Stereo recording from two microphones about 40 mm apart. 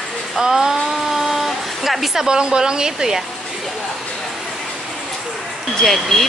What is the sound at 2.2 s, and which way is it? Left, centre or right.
Speech, centre.